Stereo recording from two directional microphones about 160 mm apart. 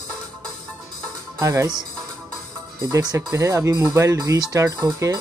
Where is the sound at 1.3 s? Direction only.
20° right (ahead or behind).